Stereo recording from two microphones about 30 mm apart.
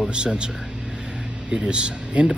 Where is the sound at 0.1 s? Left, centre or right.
Right.